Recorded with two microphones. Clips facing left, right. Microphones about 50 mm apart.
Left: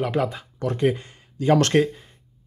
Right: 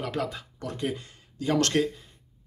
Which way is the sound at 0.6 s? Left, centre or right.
Left.